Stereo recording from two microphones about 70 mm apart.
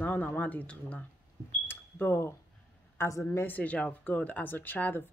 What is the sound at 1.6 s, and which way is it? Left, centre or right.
Cash register, left.